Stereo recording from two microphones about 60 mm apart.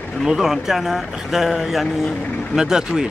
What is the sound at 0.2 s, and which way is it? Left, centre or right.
Speech, centre.